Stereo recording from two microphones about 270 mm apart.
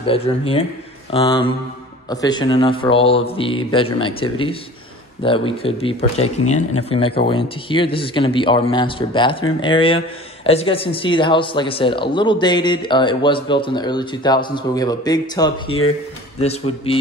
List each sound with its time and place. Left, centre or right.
0.0 s speech: left